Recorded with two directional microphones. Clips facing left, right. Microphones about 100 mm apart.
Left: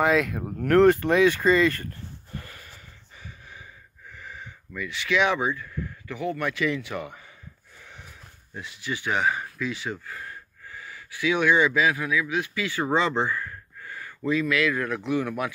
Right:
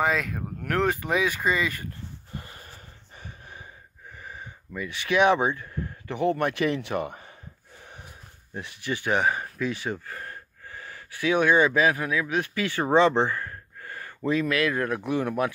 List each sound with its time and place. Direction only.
0.0 s speech: centre (ahead or behind)
2.3 s wheeze: 25° right (ahead or behind)
2.6 s gasp: 45° right (ahead or behind)
4.3 s a sound: 35° right (ahead or behind)
4.8 s speech: 45° right (ahead or behind)
5.3 s speech: 25° right (ahead or behind)
6.0 s a man's voice: 55° right (ahead or behind)
8.5 s speech: 55° right (ahead or behind)
13.3 s a sound: 45° right (ahead or behind)
15.1 s speech: 30° right (ahead or behind)